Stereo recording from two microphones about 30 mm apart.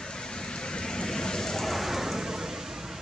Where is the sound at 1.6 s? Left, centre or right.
Centre.